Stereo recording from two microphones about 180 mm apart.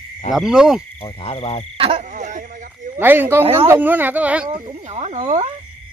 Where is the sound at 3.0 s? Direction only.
10° right (ahead or behind).